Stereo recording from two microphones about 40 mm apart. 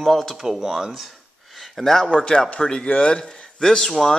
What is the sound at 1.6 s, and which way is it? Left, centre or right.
Speech, centre.